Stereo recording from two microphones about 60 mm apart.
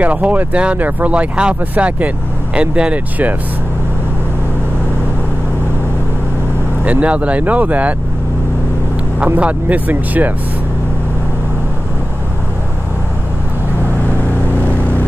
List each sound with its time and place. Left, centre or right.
0.0 s speech: right
6.8 s speech: right
9.2 s speech: right
14.5 s vehicle: left